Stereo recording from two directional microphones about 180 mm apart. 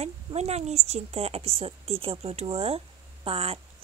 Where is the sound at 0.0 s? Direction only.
35° right (ahead or behind).